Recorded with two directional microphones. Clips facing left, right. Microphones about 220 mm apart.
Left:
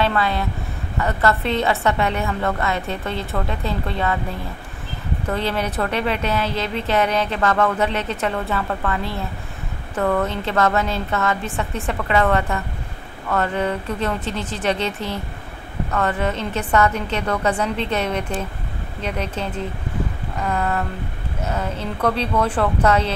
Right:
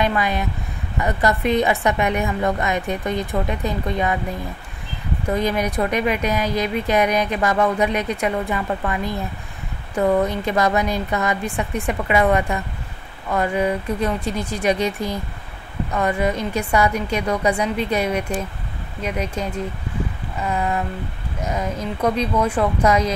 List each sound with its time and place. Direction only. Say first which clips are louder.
0.0 s a woman's voice: even; 15° right (ahead or behind)
5.3 s a woman's voice: right 3 dB; 15° right (ahead or behind)